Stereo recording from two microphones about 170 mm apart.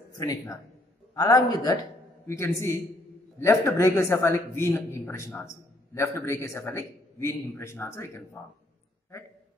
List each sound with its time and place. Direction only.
0.1 s a man's voice: 20° left (ahead or behind)